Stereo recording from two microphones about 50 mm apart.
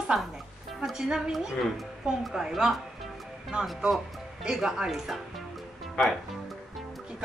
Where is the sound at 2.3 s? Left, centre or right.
Centre.